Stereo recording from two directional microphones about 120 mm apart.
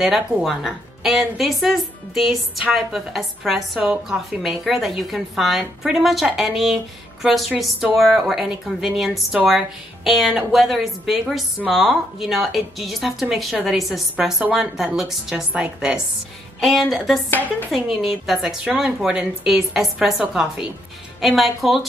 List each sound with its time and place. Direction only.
0.0 s a woman's voice: centre (ahead or behind)
16.5 s a woman's voice: centre (ahead or behind)
17.3 s speech: 15° left (ahead or behind)
17.6 s a woman's voice: centre (ahead or behind)